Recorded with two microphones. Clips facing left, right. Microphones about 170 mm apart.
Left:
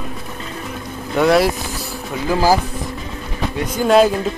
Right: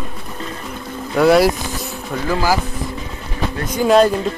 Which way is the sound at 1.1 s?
Centre (ahead or behind).